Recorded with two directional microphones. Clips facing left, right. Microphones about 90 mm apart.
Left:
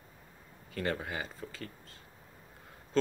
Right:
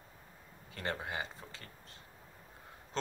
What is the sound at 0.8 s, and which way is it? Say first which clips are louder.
Speech: left 4 dB; 25° right (ahead or behind).